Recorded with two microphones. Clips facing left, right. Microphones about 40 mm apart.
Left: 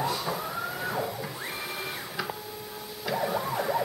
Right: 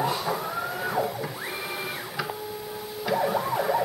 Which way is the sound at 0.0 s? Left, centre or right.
Centre.